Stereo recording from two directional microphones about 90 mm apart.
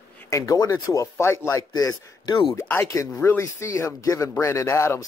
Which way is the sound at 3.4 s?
35° left (ahead or behind).